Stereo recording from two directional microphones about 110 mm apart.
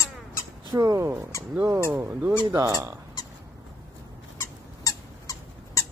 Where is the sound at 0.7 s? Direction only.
30° right (ahead or behind).